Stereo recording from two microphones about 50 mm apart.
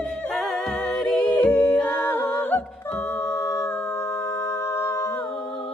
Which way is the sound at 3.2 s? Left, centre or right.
Left.